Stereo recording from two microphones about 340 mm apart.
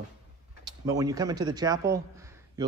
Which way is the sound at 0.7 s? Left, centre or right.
Centre.